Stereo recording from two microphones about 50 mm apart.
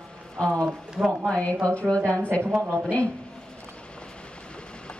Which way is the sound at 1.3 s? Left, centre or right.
Left.